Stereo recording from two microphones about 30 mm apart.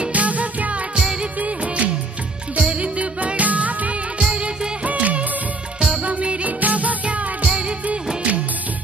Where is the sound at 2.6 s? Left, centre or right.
Right.